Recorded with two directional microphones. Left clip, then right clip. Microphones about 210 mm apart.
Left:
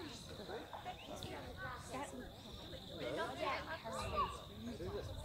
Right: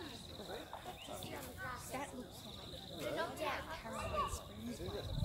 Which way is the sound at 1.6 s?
50° right (ahead or behind).